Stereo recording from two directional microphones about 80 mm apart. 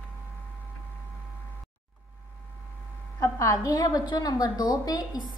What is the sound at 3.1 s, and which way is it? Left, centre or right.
A woman's voice, left.